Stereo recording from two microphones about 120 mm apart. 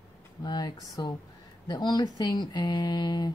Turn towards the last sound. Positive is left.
turn(degrees=35)  # may be behind; listen again after turning